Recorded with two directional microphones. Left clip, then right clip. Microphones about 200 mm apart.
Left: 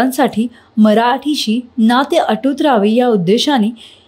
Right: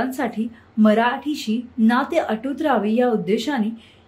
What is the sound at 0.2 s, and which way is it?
A woman's voice, 45° left (ahead or behind).